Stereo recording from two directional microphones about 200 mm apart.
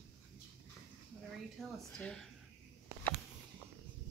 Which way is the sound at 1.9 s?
5° left (ahead or behind).